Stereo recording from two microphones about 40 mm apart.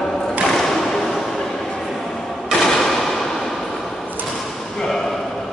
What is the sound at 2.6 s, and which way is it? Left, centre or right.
Gunshot, centre.